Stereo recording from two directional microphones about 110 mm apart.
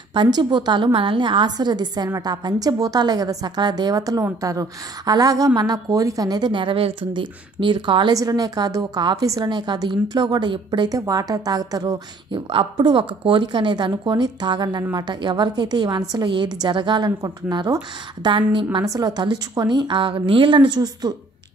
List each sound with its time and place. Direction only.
0.1 s a woman's voice: 45° right (ahead or behind)
8.1 s a woman's voice: 30° right (ahead or behind)
12.4 s a woman's voice: 50° right (ahead or behind)
18.9 s a woman's voice: 35° right (ahead or behind)